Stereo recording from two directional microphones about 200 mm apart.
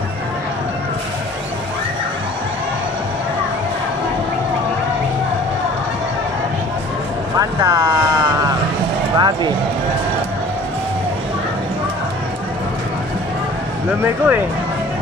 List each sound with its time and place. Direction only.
7.3 s vehicle: 20° right (ahead or behind)
9.1 s a sound: 20° right (ahead or behind)
14.0 s speech: 10° right (ahead or behind)